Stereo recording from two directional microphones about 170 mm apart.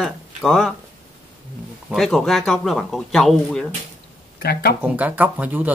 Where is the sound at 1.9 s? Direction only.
Centre (ahead or behind).